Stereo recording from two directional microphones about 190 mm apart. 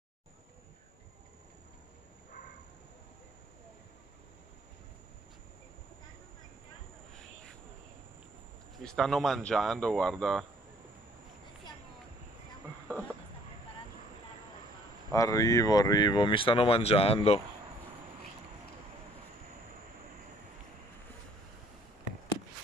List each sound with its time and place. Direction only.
8.8 s speech: centre (ahead or behind)
15.1 s speech: 15° left (ahead or behind)